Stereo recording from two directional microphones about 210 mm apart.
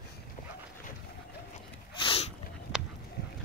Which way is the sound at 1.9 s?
25° left (ahead or behind).